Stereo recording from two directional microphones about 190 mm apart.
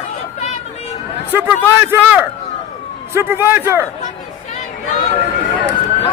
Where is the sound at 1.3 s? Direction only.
10° right (ahead or behind).